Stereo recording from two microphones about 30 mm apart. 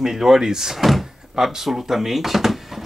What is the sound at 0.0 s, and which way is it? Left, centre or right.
Speech, centre.